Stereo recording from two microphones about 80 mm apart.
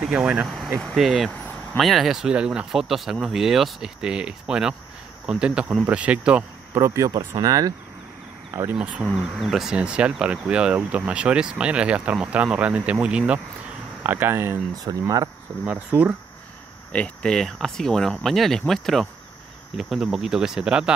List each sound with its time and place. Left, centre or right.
0.0 s speech: centre
0.5 s speech: centre
6.7 s speech: right
7.4 s speech: right
8.7 s speech: centre
9.0 s speech: centre
9.8 s speech: centre
14.0 s speech: right
14.9 s speech: right
15.6 s speech: centre
16.9 s speech: centre